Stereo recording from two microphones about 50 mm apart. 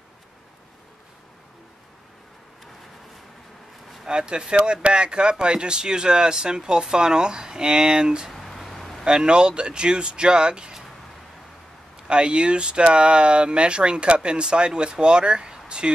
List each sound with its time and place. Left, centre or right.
4.0 s speech: centre
8.3 s a sound: centre
9.0 s speech: centre
12.1 s speech: centre